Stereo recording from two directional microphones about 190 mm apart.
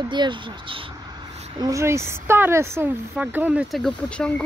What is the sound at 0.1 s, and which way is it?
A woman's voice, 25° right (ahead or behind).